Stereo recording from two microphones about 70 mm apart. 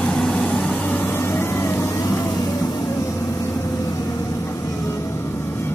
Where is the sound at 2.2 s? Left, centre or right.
Left.